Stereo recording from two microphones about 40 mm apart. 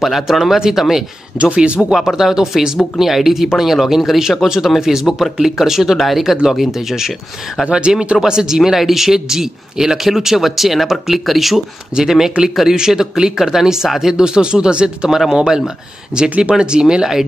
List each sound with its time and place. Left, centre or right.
0.0 s speech: centre
1.4 s speech: right
2.0 s speech: centre
7.6 s speech: right
8.2 s speech: centre
14.2 s speech: right
15.0 s speech: centre
16.3 s speech: right
16.5 s speech: right